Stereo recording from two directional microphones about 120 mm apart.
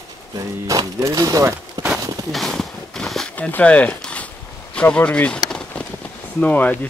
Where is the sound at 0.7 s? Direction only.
25° right (ahead or behind).